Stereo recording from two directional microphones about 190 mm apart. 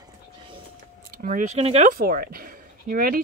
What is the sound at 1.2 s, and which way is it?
Speech, 45° right (ahead or behind).